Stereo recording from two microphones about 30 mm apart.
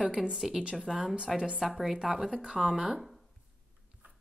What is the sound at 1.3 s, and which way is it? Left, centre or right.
Speech, right.